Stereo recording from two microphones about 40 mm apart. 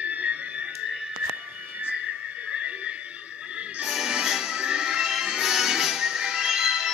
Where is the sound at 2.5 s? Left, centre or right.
Right.